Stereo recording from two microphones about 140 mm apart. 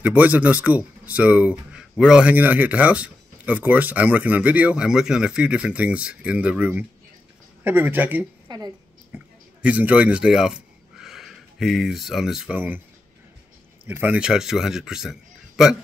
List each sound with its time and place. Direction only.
0.0 s speech: 10° right (ahead or behind)
8.5 s a woman's voice: 30° right (ahead or behind)
9.1 s speech: 10° right (ahead or behind)
13.8 s a man's voice: 15° right (ahead or behind)